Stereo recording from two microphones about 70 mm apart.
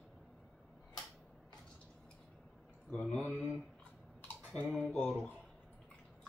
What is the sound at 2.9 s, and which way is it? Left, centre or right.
Speech, centre.